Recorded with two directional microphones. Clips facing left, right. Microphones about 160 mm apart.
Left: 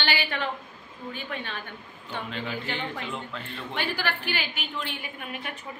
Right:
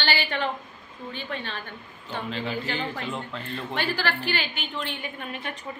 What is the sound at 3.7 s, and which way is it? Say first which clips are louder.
A woman's voice: right 2 dB; 15° left (ahead or behind).